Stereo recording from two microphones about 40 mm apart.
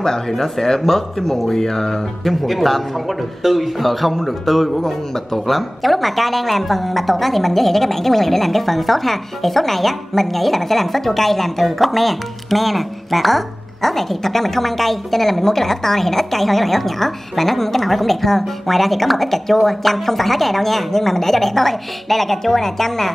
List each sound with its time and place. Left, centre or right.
0.3 s speech: centre
2.2 s a man's voice: centre